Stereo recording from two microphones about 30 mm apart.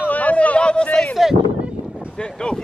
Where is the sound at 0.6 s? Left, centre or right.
Left.